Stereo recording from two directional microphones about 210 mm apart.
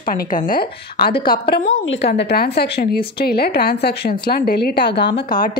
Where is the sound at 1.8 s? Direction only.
55° left (ahead or behind).